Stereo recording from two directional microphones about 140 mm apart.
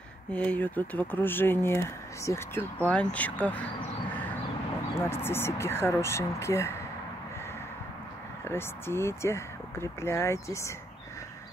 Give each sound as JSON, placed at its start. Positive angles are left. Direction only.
{"t": 0.3, "sound": "speech", "side_deg": 10}
{"t": 4.9, "sound": "speech", "side_deg": 15}
{"t": 8.5, "sound": "speech", "side_deg": 15}